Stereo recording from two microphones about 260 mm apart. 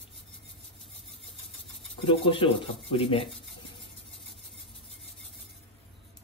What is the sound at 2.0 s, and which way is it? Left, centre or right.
Speech, centre.